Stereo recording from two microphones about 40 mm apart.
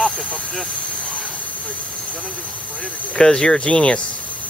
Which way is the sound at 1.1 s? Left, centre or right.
Left.